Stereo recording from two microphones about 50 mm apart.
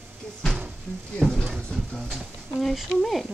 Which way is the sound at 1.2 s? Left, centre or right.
Centre.